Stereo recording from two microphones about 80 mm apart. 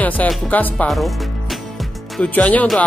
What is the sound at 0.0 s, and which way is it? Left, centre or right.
Speech, centre.